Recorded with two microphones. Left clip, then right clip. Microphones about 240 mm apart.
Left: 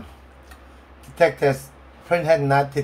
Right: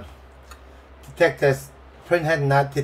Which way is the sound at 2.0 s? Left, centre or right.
Centre.